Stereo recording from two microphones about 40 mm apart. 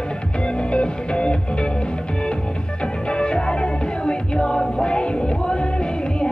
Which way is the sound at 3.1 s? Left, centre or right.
Left.